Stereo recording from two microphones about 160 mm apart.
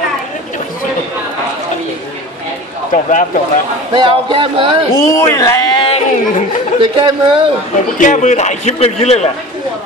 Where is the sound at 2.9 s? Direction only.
55° left (ahead or behind).